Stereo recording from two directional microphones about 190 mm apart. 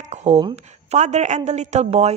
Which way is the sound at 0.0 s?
35° right (ahead or behind).